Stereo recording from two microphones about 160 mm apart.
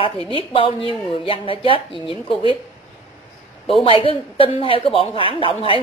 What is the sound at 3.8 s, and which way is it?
A woman's voice, 35° left (ahead or behind).